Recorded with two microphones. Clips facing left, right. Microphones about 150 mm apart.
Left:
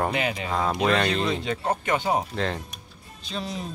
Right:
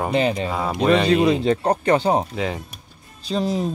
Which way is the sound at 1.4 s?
40° right (ahead or behind).